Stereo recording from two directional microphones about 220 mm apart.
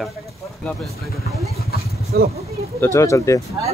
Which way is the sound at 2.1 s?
50° right (ahead or behind).